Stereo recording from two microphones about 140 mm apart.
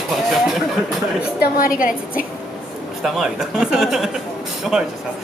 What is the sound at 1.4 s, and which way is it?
Speech, 90° left.